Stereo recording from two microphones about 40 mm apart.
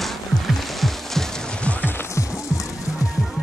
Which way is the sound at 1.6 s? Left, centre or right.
Left.